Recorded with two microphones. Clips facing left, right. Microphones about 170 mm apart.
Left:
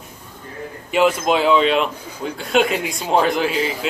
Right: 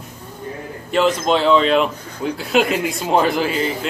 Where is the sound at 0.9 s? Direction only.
5° left (ahead or behind).